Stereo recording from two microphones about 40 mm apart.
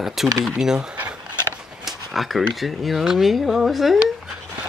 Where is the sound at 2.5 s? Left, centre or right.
Centre.